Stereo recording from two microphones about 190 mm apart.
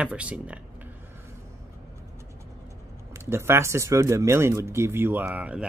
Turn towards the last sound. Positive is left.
turn(degrees=-5)  # may be behind; listen again after turning